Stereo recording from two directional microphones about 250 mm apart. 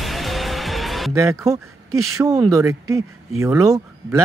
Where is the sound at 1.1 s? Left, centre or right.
Centre.